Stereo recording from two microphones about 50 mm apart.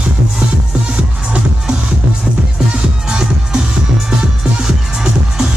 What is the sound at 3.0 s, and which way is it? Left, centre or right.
Music, centre.